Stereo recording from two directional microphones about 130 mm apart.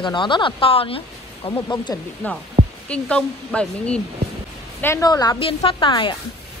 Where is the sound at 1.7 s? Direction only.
35° left (ahead or behind).